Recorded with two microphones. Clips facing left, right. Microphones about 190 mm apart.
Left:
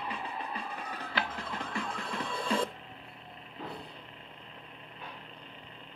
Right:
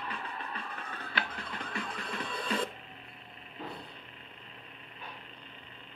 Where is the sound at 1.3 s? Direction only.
25° left (ahead or behind).